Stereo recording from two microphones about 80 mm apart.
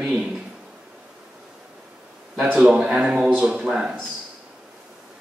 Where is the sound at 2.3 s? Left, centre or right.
Centre.